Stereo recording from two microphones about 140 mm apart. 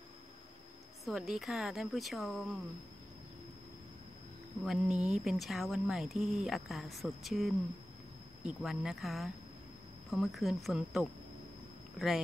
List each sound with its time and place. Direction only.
1.0 s speech: centre (ahead or behind)
4.6 s speech: 5° right (ahead or behind)